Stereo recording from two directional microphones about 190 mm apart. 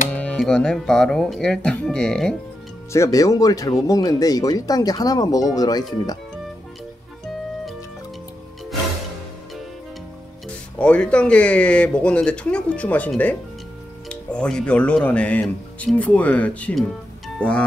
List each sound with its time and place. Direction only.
0.1 s speech: 5° left (ahead or behind)
2.9 s speech: 15° left (ahead or behind)
10.5 s speech: 5° left (ahead or behind)